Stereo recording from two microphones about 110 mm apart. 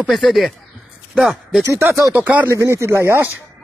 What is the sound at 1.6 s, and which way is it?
Speech, 25° right (ahead or behind).